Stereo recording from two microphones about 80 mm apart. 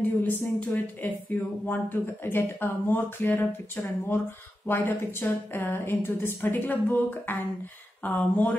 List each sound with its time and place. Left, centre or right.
0.2 s a woman's voice: left